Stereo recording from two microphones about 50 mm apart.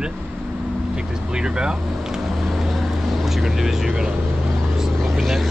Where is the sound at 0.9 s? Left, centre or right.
Centre.